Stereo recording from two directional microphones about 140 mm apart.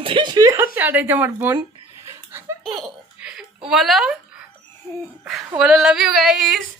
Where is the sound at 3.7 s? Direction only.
Centre (ahead or behind).